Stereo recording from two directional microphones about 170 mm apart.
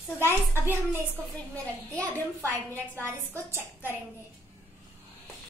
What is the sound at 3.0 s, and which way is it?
Speech, 15° right (ahead or behind).